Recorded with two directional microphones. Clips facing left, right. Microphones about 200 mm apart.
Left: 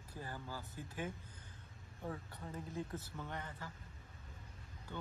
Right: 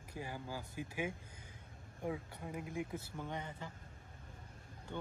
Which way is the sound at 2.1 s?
10° right (ahead or behind).